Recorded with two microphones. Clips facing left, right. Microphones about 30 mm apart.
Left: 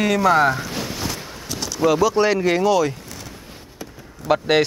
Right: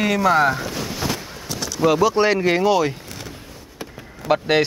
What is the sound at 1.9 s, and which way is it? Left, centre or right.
Speech, centre.